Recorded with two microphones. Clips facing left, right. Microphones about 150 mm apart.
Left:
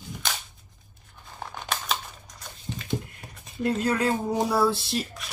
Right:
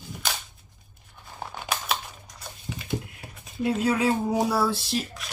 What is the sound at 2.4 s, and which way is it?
Speech, 5° right (ahead or behind).